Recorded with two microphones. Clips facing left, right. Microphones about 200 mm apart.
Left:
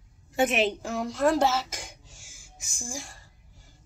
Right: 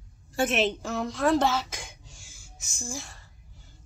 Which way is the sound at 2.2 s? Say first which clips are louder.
Even; 50° left (ahead or behind).